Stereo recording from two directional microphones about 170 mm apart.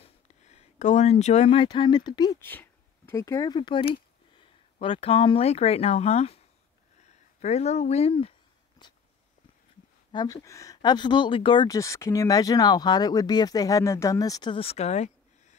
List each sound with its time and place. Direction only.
0.0 s speech: 40° left (ahead or behind); by 2.4 s 25° left (ahead or behind)
2.4 s speech: 10° left (ahead or behind); by 6.4 s 35° left (ahead or behind)
7.0 s a sound: 40° left (ahead or behind)
10.1 s speech: 20° left (ahead or behind); by 15.5 s 40° left (ahead or behind)